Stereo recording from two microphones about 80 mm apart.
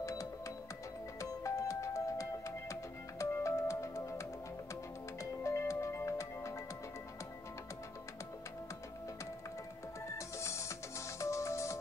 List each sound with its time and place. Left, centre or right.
0.0 s music: left
5.2 s music: left
10.1 s music: left